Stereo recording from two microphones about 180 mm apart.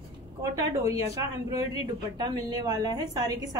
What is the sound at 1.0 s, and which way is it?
A woman's voice, 20° right (ahead or behind).